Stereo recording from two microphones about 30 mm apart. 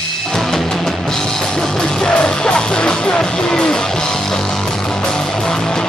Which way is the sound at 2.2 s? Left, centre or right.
Left.